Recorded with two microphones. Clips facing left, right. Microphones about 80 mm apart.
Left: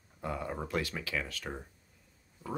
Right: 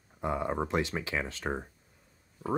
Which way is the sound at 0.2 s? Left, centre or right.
Right.